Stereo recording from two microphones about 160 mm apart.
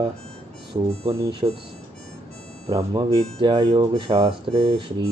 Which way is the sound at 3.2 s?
30° right (ahead or behind).